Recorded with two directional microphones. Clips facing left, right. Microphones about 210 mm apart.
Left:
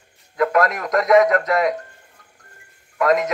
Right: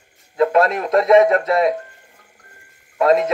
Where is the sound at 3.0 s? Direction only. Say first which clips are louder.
Right 3 dB; 30° right (ahead or behind).